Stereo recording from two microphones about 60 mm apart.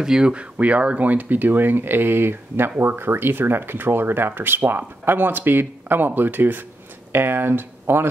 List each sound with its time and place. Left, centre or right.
0.0 s speech: centre; by 8.1 s right